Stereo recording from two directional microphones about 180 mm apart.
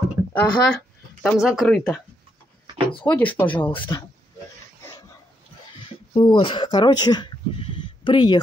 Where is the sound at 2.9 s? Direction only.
30° left (ahead or behind).